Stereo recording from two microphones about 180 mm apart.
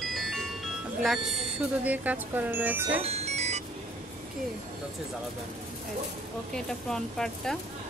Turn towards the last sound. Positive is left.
turn(degrees=0)  # may be behind; listen again after turning